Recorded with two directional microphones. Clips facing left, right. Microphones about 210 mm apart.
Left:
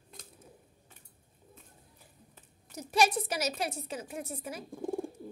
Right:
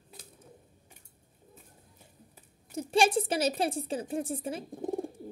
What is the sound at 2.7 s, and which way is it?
A woman's voice, 30° right (ahead or behind).